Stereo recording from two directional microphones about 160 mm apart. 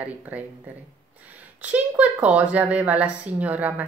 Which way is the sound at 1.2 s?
10° right (ahead or behind).